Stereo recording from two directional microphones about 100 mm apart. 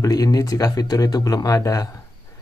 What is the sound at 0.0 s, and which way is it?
Speech, 40° left (ahead or behind).